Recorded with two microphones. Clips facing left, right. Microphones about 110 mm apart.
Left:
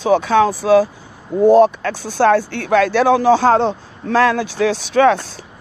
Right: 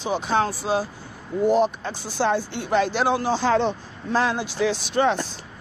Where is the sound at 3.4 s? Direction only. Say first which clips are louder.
Left 7 dB; 45° left (ahead or behind).